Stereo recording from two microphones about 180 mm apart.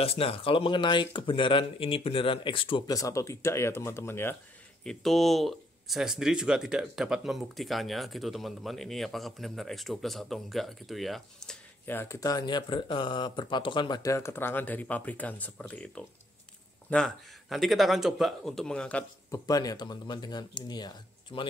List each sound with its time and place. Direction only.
0.0 s speech: 30° left (ahead or behind); by 4.4 s 15° left (ahead or behind)
4.8 s speech: centre (ahead or behind)
19.4 s speech: 20° left (ahead or behind)